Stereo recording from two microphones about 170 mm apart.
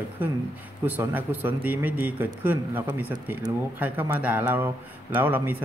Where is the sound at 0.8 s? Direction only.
10° right (ahead or behind).